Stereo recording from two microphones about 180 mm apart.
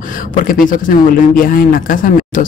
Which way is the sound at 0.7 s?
50° left (ahead or behind).